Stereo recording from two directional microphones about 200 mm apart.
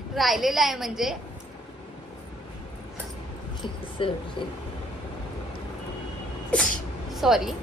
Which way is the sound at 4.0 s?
25° left (ahead or behind).